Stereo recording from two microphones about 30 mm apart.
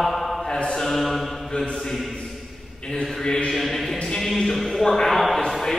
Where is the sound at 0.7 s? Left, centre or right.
Centre.